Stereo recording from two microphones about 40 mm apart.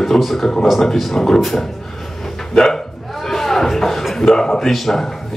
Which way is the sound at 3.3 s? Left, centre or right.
Centre.